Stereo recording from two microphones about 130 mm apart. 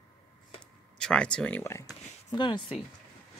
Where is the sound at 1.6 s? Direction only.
25° left (ahead or behind).